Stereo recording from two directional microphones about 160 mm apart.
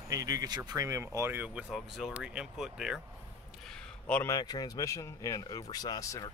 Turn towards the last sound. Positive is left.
turn(degrees=20)  # may be behind; listen again after turning